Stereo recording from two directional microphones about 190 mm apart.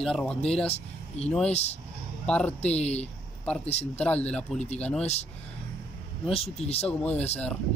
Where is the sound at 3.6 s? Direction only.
35° left (ahead or behind).